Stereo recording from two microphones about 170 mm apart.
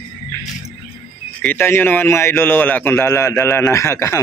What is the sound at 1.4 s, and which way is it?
A man's voice, 10° left (ahead or behind).